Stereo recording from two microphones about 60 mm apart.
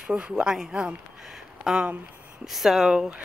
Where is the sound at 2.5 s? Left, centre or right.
Centre.